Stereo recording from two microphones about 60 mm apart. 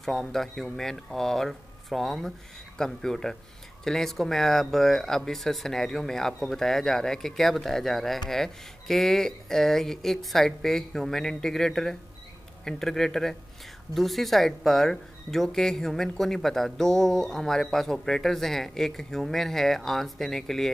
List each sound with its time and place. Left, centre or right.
0.0 s speech: centre